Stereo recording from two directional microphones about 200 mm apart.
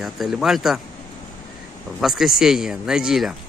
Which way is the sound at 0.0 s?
Centre (ahead or behind).